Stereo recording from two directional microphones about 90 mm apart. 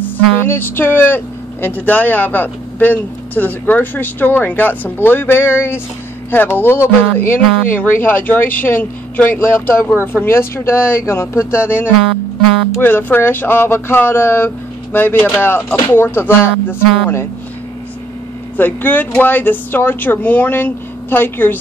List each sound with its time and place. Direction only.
0.5 s speech: 25° left (ahead or behind)
18.6 s speech: 20° left (ahead or behind)